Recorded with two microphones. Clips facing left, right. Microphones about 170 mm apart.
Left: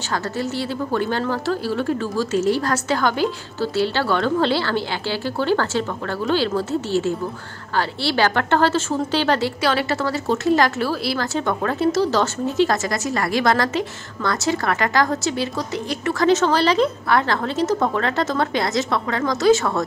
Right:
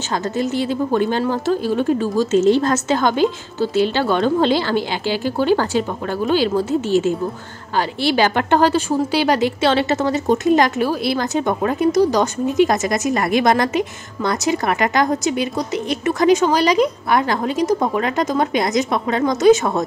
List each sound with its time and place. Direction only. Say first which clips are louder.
0.1 s a woman's voice: right 4 dB; 15° right (ahead or behind)
9.6 s a woman's voice: right 4 dB; 25° right (ahead or behind)